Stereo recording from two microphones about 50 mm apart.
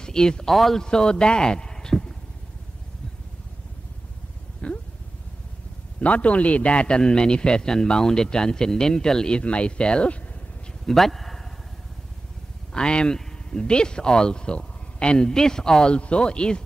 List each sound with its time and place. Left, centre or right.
0.0 s a man's voice: centre
0.8 s speech: centre
4.6 s a sound: left
5.9 s a man's voice: left
10.9 s a man's voice: centre
12.7 s speech: centre